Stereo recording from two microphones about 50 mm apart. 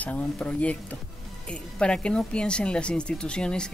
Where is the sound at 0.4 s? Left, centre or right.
Left.